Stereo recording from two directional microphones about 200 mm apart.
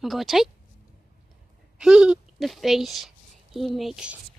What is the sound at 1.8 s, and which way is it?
Speech, 5° right (ahead or behind).